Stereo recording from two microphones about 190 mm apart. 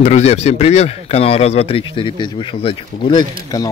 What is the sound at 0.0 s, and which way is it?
Speech, 35° left (ahead or behind).